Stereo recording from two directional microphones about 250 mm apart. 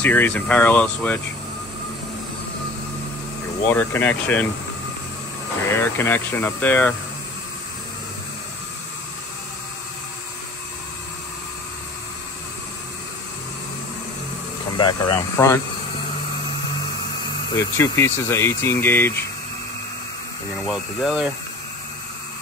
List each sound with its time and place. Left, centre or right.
0.0 s speech: centre
3.6 s speech: centre
5.7 s speech: centre
14.8 s speech: centre
17.6 s speech: centre
20.6 s speech: centre